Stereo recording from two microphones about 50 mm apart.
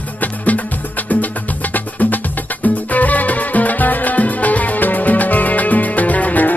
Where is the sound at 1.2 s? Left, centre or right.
Left.